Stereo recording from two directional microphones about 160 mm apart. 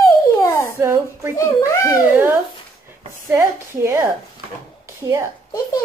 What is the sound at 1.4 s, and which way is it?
Speech, 20° left (ahead or behind).